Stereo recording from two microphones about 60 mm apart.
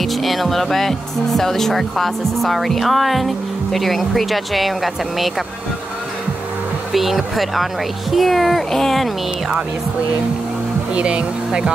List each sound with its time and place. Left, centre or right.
0.0 s speech: centre
6.9 s speech: centre
11.0 s speech: centre